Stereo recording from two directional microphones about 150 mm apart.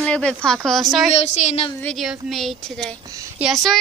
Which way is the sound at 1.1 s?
45° left (ahead or behind).